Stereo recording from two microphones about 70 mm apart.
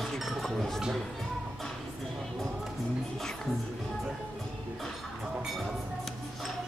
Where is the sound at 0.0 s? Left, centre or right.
Centre.